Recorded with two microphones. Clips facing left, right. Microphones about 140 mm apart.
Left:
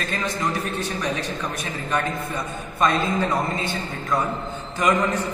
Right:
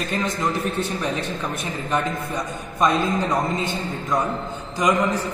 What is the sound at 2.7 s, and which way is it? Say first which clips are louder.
A man's voice: right 1 dB; 15° right (ahead or behind).